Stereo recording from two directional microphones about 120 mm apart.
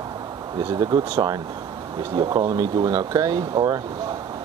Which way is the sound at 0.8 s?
35° right (ahead or behind).